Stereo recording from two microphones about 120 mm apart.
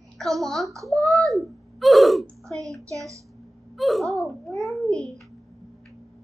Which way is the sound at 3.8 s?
Centre (ahead or behind).